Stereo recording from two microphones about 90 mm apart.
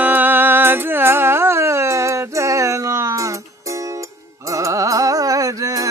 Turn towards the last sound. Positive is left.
turn(degrees=-40)  # may be behind; listen again after turning